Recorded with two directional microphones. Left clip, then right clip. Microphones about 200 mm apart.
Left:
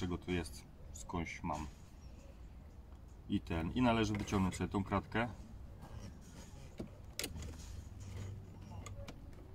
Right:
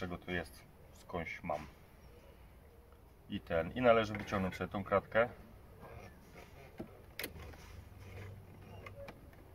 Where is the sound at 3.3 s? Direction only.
15° right (ahead or behind).